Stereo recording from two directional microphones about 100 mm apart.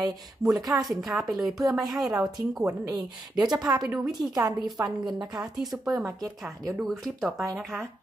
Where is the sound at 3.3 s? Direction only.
5° right (ahead or behind).